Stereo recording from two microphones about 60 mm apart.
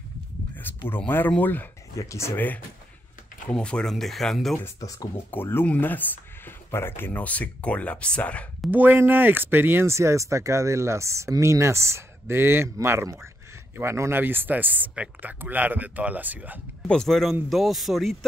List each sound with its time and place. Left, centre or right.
0.6 s speech: left
2.0 s speech: left
2.3 s speech: left
3.5 s speech: centre
3.9 s a man's voice: centre
4.7 s speech: left
5.1 s speech: left
8.6 s speech: right
9.9 s speech: right
14.2 s speech: right
16.8 s a man's voice: centre